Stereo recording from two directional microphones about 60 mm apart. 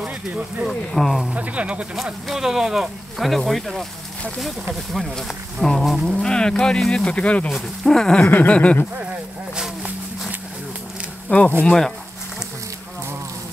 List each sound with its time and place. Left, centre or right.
0.3 s speech: right
0.7 s speech: centre
1.3 s speech: right
2.2 s speech: centre
4.9 s speech: centre
6.0 s speech: centre
7.1 s a sound: left
7.4 s speech: centre
8.3 s a sound: left
11.3 s a sound: left
11.6 s speech: centre